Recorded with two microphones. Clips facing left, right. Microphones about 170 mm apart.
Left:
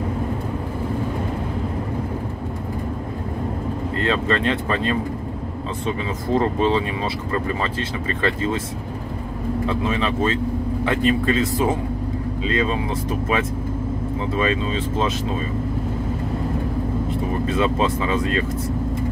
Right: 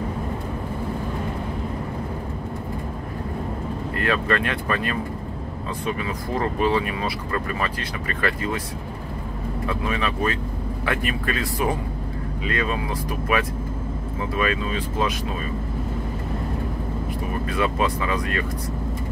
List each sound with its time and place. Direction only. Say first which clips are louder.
4.0 s speech: left 2 dB; 25° left (ahead or behind)
9.7 s speech: left 2 dB; 20° left (ahead or behind)
14.3 s speech: left 2 dB; 25° left (ahead or behind)
17.5 s speech: left 2 dB; 25° left (ahead or behind)